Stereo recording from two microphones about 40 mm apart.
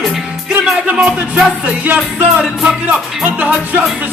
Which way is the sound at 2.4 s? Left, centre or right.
Centre.